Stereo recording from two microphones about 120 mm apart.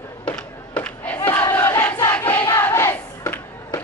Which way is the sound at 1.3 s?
15° left (ahead or behind).